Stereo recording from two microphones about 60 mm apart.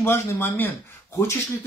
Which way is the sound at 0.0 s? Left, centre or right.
Left.